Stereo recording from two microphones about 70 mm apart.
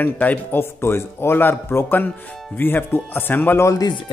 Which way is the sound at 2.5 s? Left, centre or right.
Left.